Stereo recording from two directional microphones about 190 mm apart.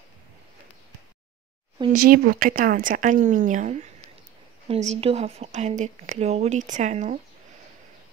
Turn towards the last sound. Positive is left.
turn(degrees=-40)  # may be behind; listen again after turning